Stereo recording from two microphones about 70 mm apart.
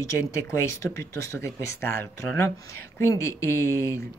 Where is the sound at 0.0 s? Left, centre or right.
Left.